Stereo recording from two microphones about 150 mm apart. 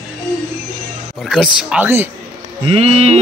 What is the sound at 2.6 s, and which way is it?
Speech, 40° right (ahead or behind).